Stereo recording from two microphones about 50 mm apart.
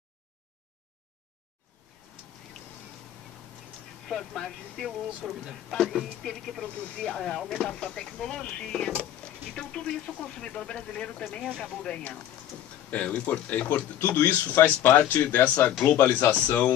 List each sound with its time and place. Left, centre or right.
4.1 s speech: centre
7.6 s speech: centre